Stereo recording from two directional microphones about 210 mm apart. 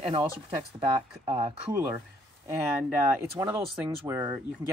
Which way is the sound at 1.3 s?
25° right (ahead or behind).